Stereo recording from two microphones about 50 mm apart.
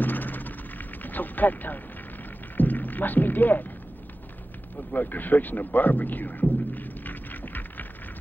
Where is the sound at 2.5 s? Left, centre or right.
Left.